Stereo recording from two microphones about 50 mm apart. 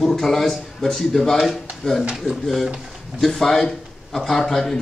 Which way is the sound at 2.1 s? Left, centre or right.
Centre.